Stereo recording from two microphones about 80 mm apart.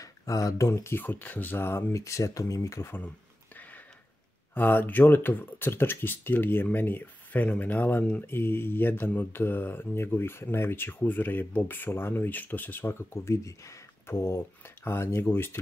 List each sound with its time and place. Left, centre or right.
0.0 s a sound: left
0.7 s speech: left
1.0 s speech: left
4.6 s speech: left